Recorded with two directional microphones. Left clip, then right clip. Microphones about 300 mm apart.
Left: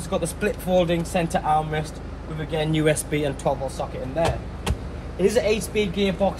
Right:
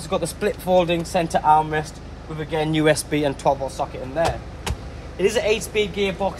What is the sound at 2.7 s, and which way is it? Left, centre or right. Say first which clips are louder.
Speech: right 4 dB; right.